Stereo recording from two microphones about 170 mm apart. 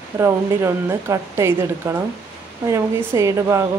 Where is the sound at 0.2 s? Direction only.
15° right (ahead or behind).